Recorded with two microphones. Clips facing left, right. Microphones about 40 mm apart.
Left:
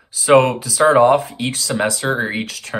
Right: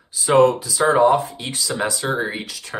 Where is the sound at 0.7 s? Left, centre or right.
Left.